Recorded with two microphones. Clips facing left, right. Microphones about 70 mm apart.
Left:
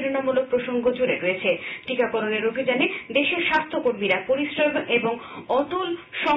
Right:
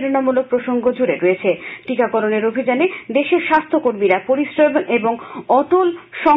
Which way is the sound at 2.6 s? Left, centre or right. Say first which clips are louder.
Right 7 dB; right.